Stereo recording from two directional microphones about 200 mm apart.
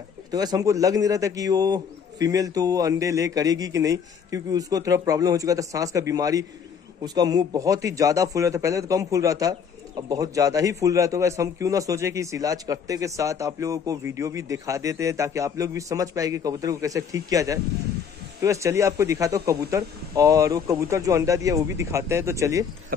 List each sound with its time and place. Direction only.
0.3 s speech: 20° right (ahead or behind)